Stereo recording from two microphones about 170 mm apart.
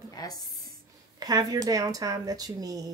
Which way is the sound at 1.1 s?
20° right (ahead or behind).